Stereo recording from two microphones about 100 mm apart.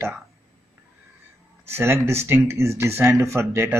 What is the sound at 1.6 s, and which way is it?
Speech, 25° right (ahead or behind).